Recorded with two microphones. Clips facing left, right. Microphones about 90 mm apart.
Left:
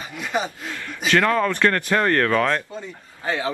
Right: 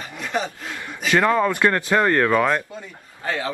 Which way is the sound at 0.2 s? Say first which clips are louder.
Even; 5° left (ahead or behind).